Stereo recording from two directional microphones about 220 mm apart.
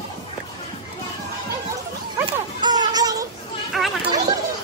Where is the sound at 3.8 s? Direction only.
Centre (ahead or behind).